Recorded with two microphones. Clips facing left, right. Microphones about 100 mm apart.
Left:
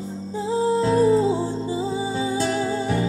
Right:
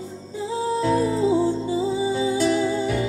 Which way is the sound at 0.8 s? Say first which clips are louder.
Left 2 dB; 30° left (ahead or behind).